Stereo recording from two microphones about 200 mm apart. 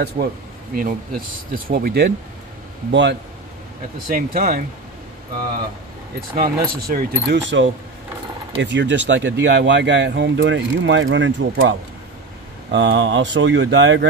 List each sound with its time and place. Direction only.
0.2 s speech: 40° right (ahead or behind)
2.9 s speech: 60° right (ahead or behind)
4.1 s speech: 50° right (ahead or behind)
6.3 s speech: 45° right (ahead or behind); by 11.7 s 65° right (ahead or behind)
12.7 s speech: 65° right (ahead or behind)